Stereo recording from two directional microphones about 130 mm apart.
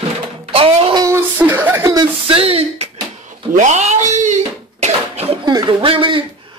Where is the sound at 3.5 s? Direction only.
65° right (ahead or behind).